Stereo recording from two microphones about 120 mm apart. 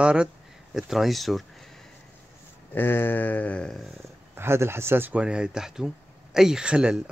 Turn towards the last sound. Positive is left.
turn(degrees=-10)  # may be behind; listen again after turning